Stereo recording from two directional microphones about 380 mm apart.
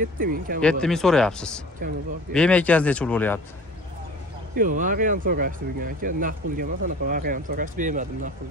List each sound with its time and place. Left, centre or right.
0.0 s speech: right
0.6 s speech: centre
1.8 s speech: right
2.3 s speech: centre
4.6 s speech: right